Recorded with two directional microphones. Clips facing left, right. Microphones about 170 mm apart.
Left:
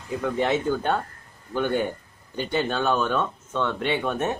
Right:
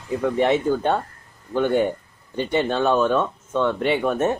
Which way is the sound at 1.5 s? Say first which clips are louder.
Right 4 dB; 25° right (ahead or behind).